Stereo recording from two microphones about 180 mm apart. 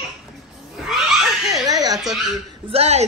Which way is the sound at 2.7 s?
35° right (ahead or behind).